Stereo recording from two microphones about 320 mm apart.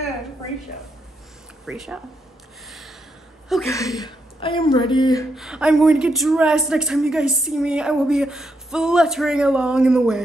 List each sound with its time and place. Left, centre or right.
1.7 s a woman's voice: centre
3.4 s a woman's voice: centre
5.3 s a woman's voice: centre